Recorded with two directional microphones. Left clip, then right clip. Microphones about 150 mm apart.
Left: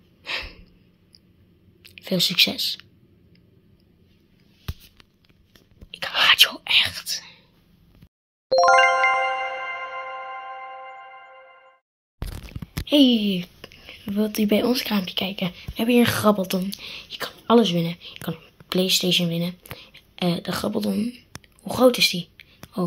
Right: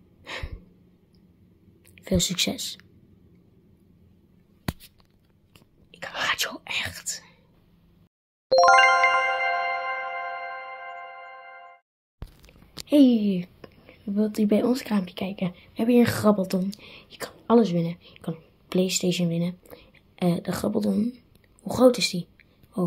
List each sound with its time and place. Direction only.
0.2 s gasp: 15° right (ahead or behind)
2.0 s speech: 20° right (ahead or behind)
5.9 s whispering: 5° right (ahead or behind)
8.5 s music: centre (ahead or behind)
12.2 s a sound: centre (ahead or behind)
12.8 s speech: 10° right (ahead or behind)